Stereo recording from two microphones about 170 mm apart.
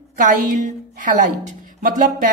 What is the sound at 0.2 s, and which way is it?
A woman's voice, 50° right (ahead or behind).